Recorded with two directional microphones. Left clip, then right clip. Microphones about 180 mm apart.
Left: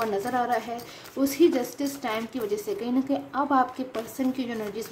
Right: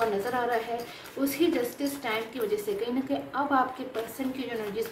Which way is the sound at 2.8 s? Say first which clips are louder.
Left 3 dB; 40° left (ahead or behind).